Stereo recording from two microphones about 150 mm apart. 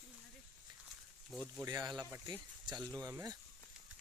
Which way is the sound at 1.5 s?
25° right (ahead or behind).